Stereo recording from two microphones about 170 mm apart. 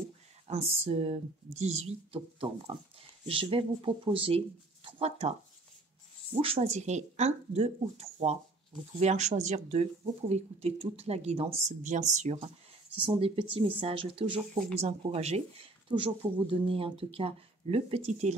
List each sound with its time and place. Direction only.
0.5 s a sound: 35° right (ahead or behind)
0.8 s speech: 40° right (ahead or behind)
6.4 s speech: 35° right (ahead or behind)
12.9 s speech: 30° right (ahead or behind)